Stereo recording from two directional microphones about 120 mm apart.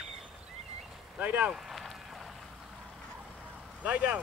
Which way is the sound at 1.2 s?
10° right (ahead or behind).